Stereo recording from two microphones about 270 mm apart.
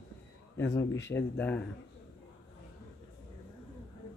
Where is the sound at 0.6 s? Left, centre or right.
Centre.